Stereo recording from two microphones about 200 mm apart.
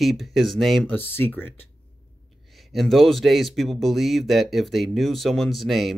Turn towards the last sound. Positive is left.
turn(degrees=0)  # may be behind; listen again after turning